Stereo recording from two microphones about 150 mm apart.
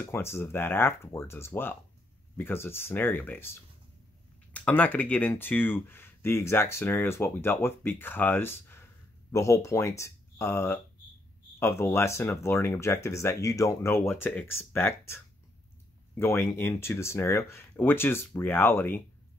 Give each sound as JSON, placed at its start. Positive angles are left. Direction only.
{"t": 0.0, "sound": "speech", "side_deg": 15}
{"t": 4.6, "sound": "speech", "side_deg": 10}